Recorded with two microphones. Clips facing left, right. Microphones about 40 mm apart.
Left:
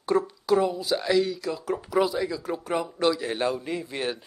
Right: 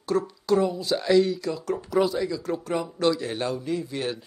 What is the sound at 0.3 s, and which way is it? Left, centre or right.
Speech, centre.